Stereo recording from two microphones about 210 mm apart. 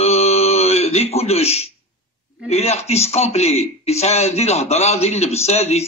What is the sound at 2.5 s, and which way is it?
A man's voice, 30° left (ahead or behind).